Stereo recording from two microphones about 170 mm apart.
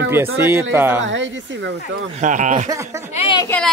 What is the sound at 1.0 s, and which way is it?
Speech, 90° right.